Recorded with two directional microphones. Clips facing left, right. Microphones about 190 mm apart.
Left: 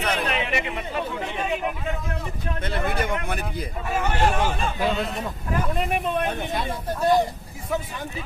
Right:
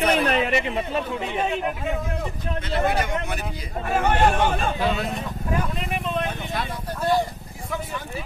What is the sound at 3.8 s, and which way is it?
Speech, 55° right (ahead or behind).